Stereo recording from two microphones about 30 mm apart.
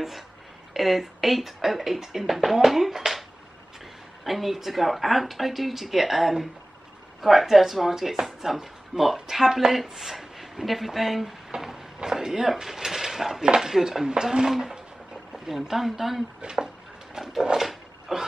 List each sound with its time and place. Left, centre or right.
0.7 s speech: centre
11.5 s speech: centre
13.8 s speech: right
15.4 s speech: centre
16.5 s a sound: centre
18.1 s speech: centre